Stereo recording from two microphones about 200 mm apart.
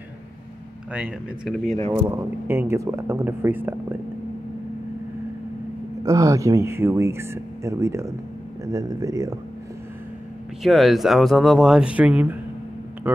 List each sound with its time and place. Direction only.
0.9 s speech: 5° right (ahead or behind)
1.9 s speech: 15° right (ahead or behind)
6.0 s speech: 15° right (ahead or behind)
10.6 s speech: centre (ahead or behind)